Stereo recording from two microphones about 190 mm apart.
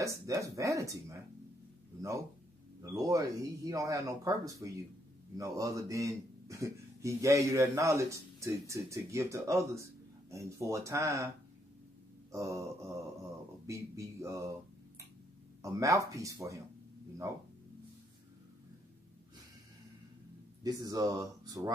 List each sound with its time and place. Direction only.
0.0 s a man's voice: 15° right (ahead or behind)
12.3 s a man's voice: 15° right (ahead or behind)
15.6 s a man's voice: 15° right (ahead or behind)
20.6 s speech: 20° right (ahead or behind)